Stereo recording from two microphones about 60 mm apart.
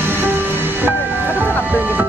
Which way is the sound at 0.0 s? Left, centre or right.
Right.